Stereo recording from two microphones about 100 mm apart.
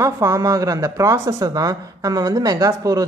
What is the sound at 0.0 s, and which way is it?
A man's voice, 35° right (ahead or behind).